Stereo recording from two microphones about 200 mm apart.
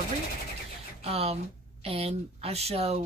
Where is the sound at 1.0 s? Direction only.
30° right (ahead or behind).